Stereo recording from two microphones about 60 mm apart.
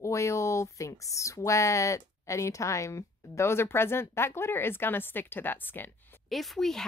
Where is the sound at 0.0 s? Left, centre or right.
Left.